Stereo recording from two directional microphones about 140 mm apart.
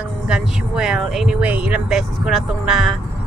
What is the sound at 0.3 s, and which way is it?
Speech, 5° right (ahead or behind).